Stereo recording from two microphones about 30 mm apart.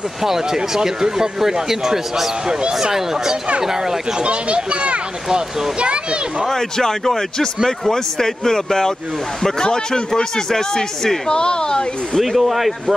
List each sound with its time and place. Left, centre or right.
0.2 s a man's voice: centre
4.2 s speech: right
6.5 s speech: centre
11.2 s speech: left
12.2 s speech: centre